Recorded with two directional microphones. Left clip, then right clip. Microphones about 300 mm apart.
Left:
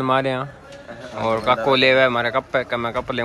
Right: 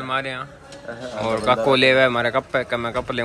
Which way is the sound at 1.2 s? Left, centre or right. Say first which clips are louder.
Left 1 dB; centre.